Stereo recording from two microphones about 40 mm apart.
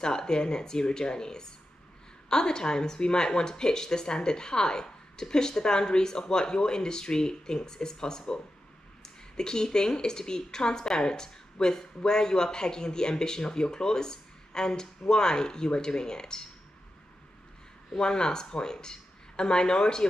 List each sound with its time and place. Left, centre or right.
0.0 s a woman's voice: centre
17.9 s a woman's voice: left